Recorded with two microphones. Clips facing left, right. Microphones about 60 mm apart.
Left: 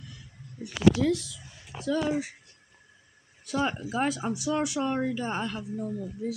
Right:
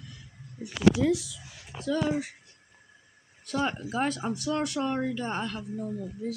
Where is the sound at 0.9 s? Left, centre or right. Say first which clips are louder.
Right 1 dB; centre.